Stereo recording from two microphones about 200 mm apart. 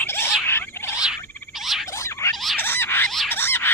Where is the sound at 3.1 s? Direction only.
Centre (ahead or behind).